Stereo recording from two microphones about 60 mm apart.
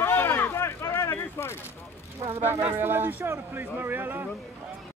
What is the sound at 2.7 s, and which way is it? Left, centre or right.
Speech, right.